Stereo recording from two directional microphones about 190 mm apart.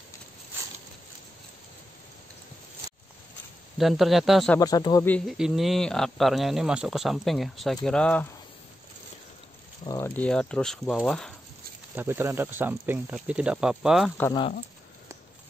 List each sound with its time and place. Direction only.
3.7 s speech: centre (ahead or behind)
4.6 s speech: 20° left (ahead or behind)
5.1 s speech: centre (ahead or behind)
10.0 s speech: 5° left (ahead or behind)
11.9 s speech: 10° right (ahead or behind)